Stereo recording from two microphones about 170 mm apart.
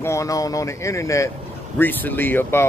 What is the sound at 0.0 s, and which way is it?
Speech, 20° left (ahead or behind).